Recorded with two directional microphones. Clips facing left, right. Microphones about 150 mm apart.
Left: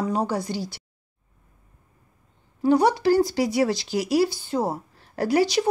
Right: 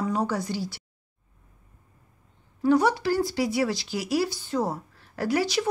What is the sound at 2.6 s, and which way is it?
Speech, 20° left (ahead or behind).